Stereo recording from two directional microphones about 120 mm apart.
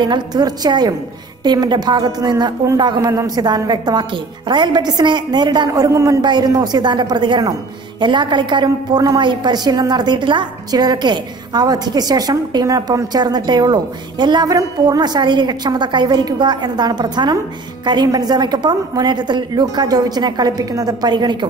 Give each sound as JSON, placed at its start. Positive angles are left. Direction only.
{"t": 0.0, "sound": "a woman's voice", "side_deg": -35}